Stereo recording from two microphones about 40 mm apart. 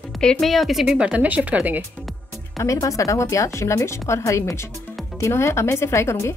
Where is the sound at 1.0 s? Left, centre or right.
Right.